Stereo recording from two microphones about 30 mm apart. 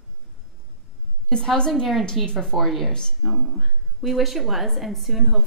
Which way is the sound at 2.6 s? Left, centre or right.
Centre.